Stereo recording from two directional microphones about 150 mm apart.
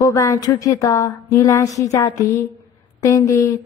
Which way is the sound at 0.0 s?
20° left (ahead or behind).